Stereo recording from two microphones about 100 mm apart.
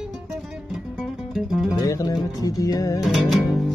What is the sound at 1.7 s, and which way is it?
Music, 35° left (ahead or behind).